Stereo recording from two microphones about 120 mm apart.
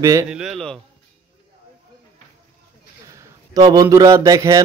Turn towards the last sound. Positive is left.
turn(degrees=-25)  # may be behind; listen again after turning